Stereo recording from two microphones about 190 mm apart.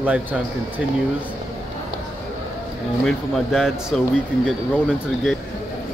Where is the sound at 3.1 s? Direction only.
Centre (ahead or behind).